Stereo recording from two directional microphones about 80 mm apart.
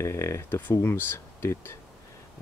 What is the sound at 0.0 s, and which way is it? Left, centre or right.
Speech, left.